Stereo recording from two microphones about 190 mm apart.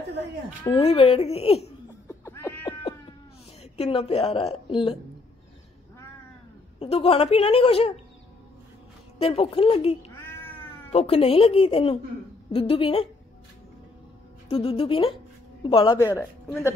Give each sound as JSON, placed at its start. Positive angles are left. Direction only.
{"t": 0.7, "sound": "a woman's voice", "side_deg": 30}
{"t": 2.0, "sound": "cat", "side_deg": 15}
{"t": 3.7, "sound": "a woman's voice", "side_deg": 30}
{"t": 6.8, "sound": "a woman's voice", "side_deg": 30}
{"t": 9.2, "sound": "speech", "side_deg": 30}
{"t": 10.1, "sound": "cat", "side_deg": 10}
{"t": 10.9, "sound": "a woman's voice", "side_deg": 30}
{"t": 14.5, "sound": "speech", "side_deg": 30}
{"t": 16.2, "sound": "speech", "side_deg": 10}